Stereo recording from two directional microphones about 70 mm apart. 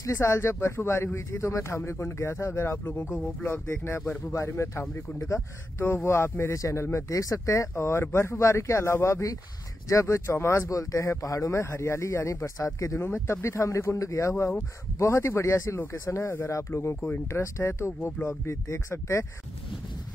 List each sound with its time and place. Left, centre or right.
0.0 s speech: left
2.8 s speech: left